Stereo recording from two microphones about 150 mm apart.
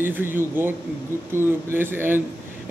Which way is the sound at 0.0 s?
15° right (ahead or behind).